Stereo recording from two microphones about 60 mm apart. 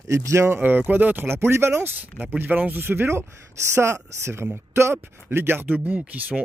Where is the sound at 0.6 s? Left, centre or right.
Right.